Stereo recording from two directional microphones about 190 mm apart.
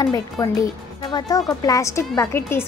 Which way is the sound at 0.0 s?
20° left (ahead or behind).